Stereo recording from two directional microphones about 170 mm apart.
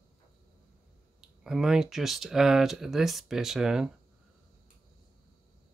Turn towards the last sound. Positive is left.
turn(degrees=-5)  # may be behind; listen again after turning